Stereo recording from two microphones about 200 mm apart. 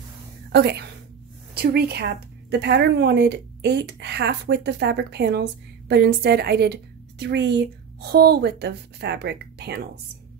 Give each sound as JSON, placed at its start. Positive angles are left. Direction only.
{"t": 0.5, "sound": "a woman's voice", "side_deg": -55}